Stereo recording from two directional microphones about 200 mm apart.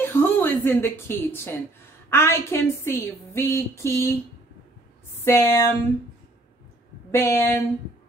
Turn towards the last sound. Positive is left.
turn(degrees=10)  # may be behind; listen again after turning